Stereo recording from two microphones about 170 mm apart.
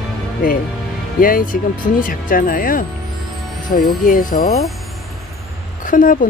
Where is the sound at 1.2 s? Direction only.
55° left (ahead or behind).